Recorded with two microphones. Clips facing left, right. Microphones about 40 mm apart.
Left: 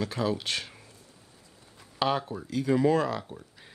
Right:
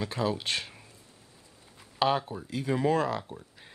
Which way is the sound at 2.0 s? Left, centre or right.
Centre.